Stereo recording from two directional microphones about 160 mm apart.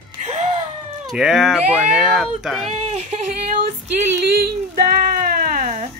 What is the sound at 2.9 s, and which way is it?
Yodeling, 45° right (ahead or behind).